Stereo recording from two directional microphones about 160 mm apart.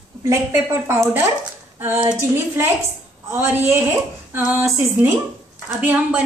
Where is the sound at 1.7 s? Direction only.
15° right (ahead or behind).